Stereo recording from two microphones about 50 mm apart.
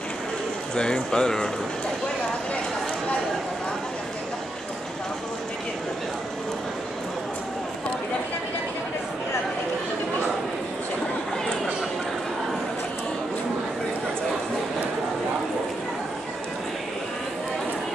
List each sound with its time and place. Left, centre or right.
0.7 s speech: centre